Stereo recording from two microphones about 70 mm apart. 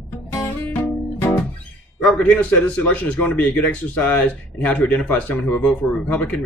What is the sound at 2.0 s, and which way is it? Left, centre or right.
Speech, centre.